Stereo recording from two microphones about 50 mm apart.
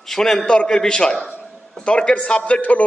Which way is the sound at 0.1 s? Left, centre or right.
Centre.